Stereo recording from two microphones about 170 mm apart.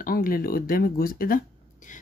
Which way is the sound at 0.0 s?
60° left (ahead or behind).